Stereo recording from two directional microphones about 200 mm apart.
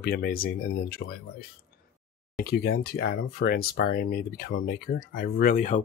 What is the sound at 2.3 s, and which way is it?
Speech, 55° left (ahead or behind).